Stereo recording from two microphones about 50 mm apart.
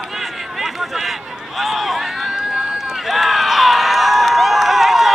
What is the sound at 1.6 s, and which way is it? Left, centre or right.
Run, centre.